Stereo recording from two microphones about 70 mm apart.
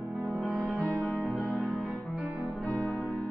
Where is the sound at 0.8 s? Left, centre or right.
Centre.